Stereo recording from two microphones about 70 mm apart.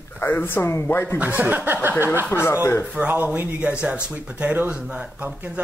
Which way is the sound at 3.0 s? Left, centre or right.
Right.